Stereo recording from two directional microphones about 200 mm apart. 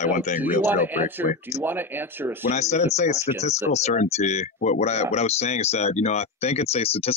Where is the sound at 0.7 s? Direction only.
10° right (ahead or behind).